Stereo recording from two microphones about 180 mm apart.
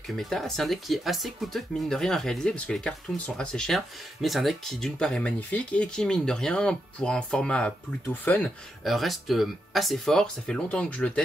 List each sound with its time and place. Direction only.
0.1 s speech: centre (ahead or behind)